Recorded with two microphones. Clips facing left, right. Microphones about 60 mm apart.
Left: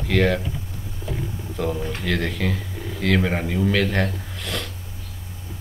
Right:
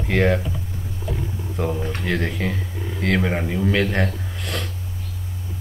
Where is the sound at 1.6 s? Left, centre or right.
Right.